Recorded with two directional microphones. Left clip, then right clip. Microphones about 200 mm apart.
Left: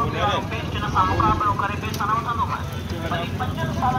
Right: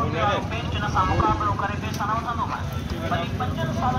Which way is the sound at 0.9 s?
45° right (ahead or behind).